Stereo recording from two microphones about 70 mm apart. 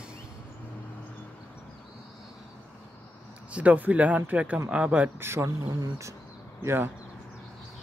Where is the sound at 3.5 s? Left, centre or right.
Right.